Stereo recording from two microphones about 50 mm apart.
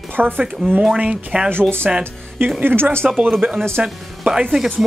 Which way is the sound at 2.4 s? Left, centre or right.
Right.